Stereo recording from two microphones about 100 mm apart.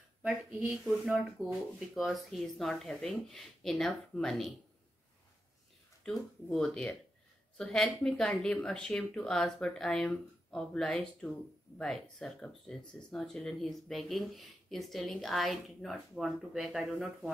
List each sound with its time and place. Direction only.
0.5 s speech: 15° right (ahead or behind)
0.8 s speech: centre (ahead or behind)
6.0 s speech: 5° left (ahead or behind)